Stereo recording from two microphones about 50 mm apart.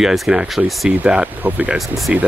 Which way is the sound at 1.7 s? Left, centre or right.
Centre.